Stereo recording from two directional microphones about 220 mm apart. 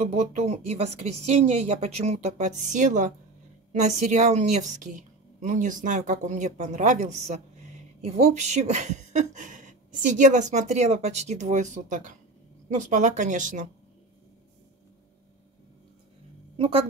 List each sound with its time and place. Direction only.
0.1 s speech: 30° right (ahead or behind)
16.5 s speech: 25° right (ahead or behind)